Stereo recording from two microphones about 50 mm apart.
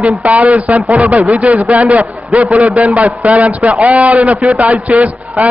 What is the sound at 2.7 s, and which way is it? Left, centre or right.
A man's voice, right.